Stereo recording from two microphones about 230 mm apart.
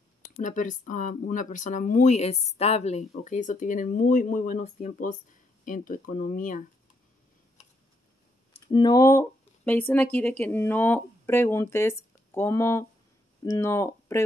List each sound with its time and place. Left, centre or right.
0.4 s speech: left
8.6 s speech: centre